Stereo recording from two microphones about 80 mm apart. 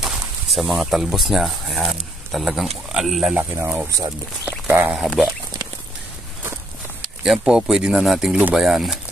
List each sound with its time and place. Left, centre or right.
0.0 s speech: centre
3.3 s speech: right
4.9 s speech: centre
7.2 s speech: centre